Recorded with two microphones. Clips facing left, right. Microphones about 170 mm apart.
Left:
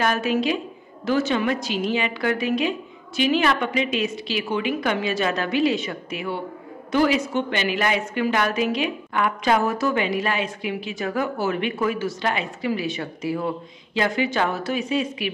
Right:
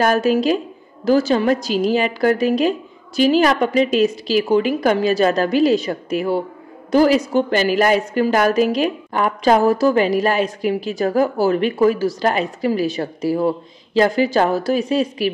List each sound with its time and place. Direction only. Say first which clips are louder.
0.0 s a woman's voice: right 6 dB; 40° right (ahead or behind)